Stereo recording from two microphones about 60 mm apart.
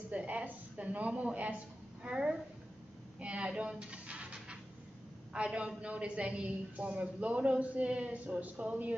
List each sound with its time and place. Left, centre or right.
0.1 s a woman's voice: right
3.2 s a sound: centre
5.3 s a woman's voice: centre